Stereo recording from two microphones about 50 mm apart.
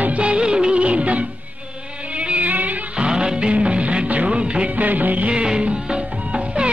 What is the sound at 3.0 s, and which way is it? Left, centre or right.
Music, centre.